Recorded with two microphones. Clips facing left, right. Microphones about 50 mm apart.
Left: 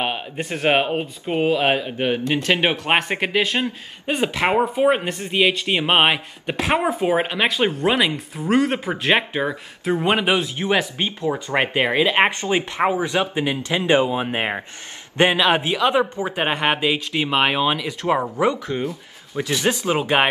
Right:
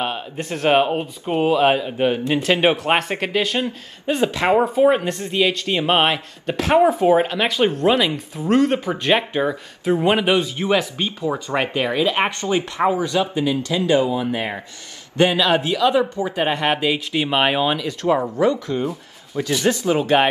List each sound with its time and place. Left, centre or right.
0.4 s speech: centre
10.6 s speech: centre
11.5 s speech: left; by 17.8 s centre
17.8 s speech: centre